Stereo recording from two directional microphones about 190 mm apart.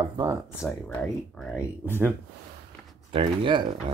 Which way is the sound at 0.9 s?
5° left (ahead or behind).